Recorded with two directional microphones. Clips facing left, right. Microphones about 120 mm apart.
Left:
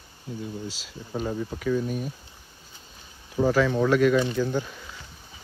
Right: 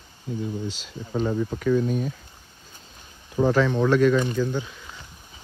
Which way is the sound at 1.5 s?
45° right (ahead or behind).